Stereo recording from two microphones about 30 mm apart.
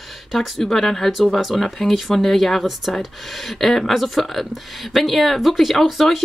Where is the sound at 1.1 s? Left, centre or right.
Centre.